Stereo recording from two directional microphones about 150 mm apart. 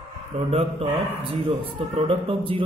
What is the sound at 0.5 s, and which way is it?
Speech, 45° right (ahead or behind).